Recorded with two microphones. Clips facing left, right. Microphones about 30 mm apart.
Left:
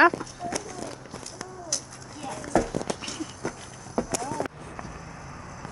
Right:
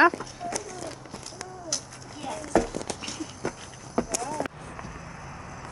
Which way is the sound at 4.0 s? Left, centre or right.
Right.